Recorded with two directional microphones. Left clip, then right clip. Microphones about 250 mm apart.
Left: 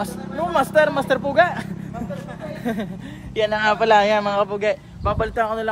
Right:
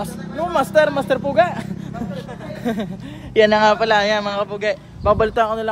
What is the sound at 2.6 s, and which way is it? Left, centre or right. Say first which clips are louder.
Speech: right 4 dB; centre.